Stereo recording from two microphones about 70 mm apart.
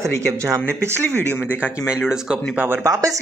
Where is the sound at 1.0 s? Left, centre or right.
Left.